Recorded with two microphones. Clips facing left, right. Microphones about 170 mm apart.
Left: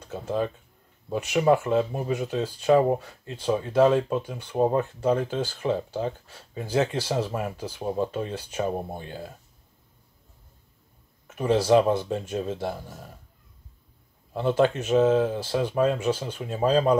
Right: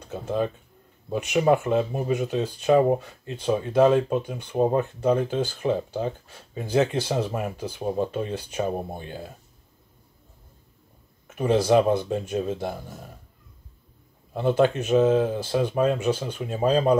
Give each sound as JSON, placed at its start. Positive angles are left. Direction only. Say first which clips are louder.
{"t": 0.1, "sound": "speech", "louder": "right 1 dB", "side_deg": -20}
{"t": 11.3, "sound": "speech", "louder": "even", "side_deg": -15}
{"t": 14.3, "sound": "speech", "louder": "right 1 dB", "side_deg": -15}